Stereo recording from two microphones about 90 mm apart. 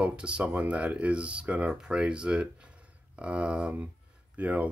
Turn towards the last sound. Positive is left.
turn(degrees=-15)  # may be behind; listen again after turning